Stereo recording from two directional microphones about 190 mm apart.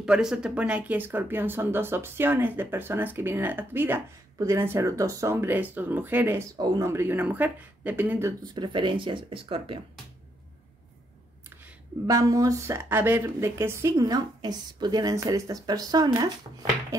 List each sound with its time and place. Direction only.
0.0 s speech: 5° right (ahead or behind); by 9.8 s 30° right (ahead or behind)
11.6 s speech: 15° right (ahead or behind)